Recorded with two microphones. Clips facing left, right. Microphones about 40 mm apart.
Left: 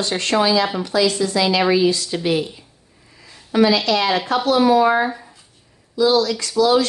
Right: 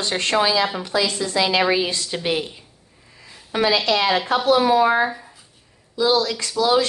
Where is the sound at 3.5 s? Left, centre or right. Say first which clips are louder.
Left 3 dB; right.